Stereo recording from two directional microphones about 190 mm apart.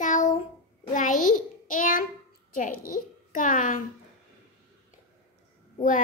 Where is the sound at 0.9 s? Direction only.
45° left (ahead or behind).